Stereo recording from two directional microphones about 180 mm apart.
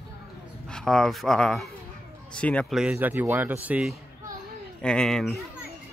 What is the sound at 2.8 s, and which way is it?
Speech, 10° right (ahead or behind).